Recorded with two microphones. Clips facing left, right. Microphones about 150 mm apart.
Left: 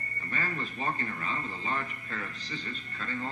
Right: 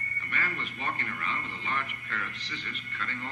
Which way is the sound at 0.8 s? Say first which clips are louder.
Left 1 dB; 30° left (ahead or behind).